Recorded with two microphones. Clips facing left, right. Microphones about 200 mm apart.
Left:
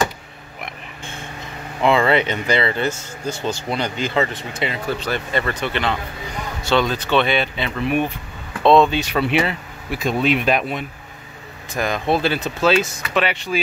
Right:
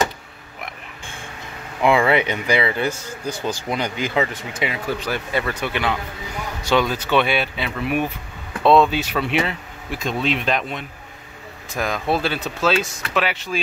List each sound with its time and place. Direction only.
1.8 s speech: 10° right (ahead or behind)
2.9 s speech: 25° left (ahead or behind)
3.5 s speech: 10° right (ahead or behind)